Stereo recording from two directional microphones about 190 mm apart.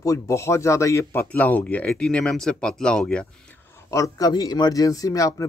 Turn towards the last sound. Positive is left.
turn(degrees=15)  # may be behind; listen again after turning